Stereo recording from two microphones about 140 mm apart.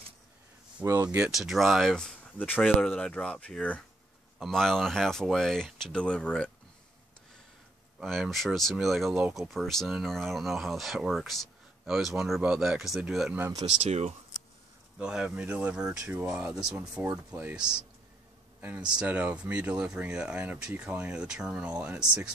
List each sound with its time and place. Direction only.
0.8 s speech: 20° right (ahead or behind)
1.2 s speech: 5° right (ahead or behind)
8.0 s speech: centre (ahead or behind)
13.4 s speech: 25° right (ahead or behind)
13.7 s speech: 50° right (ahead or behind)
15.0 s speech: 5° right (ahead or behind)